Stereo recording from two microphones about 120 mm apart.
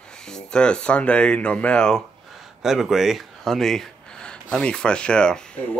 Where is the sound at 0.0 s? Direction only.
5° left (ahead or behind).